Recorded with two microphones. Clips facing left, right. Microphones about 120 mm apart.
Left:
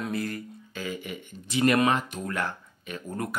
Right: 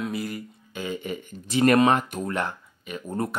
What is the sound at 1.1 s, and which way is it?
Speech, 40° right (ahead or behind).